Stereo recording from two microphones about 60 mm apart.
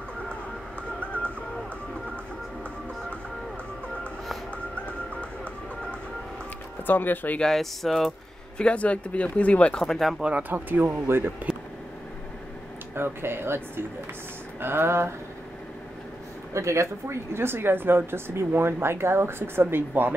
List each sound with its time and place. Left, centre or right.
6.9 s speech: left
7.3 s speech: centre
8.5 s speech: left
9.8 s speech: centre
10.5 s speech: right
12.9 s speech: right
16.5 s speech: right